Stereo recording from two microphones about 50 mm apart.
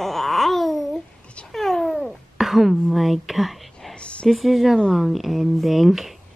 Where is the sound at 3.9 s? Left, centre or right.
Left.